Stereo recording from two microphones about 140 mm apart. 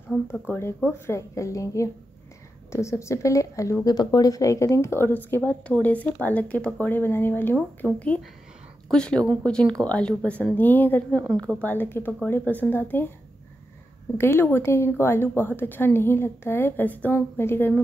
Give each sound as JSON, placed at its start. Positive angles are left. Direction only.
{"t": 0.3, "sound": "a woman's voice", "side_deg": 15}
{"t": 14.1, "sound": "a woman's voice", "side_deg": 15}